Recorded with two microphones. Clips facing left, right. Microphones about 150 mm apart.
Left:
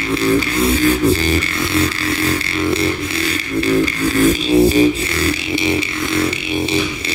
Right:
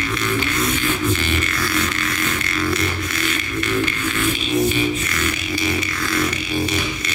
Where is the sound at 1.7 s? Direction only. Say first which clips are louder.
Left 5 dB; 30° left (ahead or behind).